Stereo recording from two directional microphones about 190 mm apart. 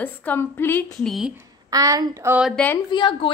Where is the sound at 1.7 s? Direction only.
20° right (ahead or behind).